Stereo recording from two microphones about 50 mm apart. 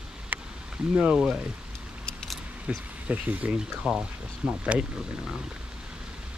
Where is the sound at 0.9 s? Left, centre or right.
Centre.